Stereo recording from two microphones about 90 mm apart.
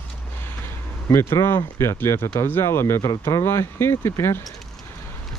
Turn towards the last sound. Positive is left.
turn(degrees=30)  # may be behind; listen again after turning